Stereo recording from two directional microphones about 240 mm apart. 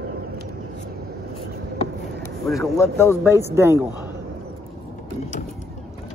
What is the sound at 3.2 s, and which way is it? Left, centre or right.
Speech, centre.